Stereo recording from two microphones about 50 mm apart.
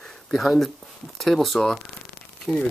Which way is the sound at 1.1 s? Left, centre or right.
Centre.